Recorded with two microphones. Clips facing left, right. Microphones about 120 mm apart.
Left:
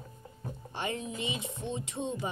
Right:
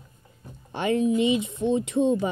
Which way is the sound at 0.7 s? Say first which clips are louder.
Right 14 dB; 75° right (ahead or behind).